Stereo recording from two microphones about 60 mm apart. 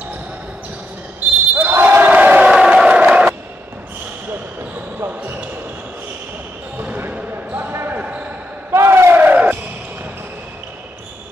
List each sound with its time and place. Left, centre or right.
1.5 s basketball bounce: right
2.0 s crowd: right
5.0 s basketball bounce: right
6.8 s basketball bounce: right
7.7 s basketball bounce: right
8.0 s basketball bounce: right
8.7 s battle cry: right
9.1 s music: right